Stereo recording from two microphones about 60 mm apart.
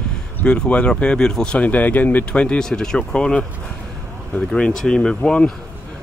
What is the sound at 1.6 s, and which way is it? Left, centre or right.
Speech, left.